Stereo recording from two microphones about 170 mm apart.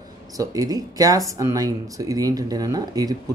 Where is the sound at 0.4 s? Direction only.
20° right (ahead or behind).